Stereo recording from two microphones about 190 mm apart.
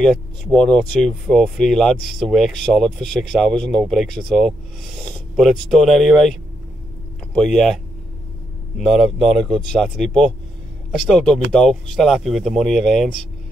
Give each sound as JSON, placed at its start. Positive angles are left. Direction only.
{"t": 0.0, "sound": "speech", "side_deg": 5}
{"t": 7.3, "sound": "speech", "side_deg": 5}